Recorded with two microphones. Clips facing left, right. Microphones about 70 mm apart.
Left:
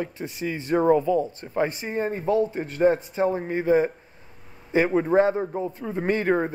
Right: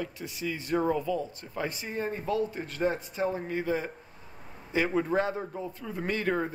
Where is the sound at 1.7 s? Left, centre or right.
Left.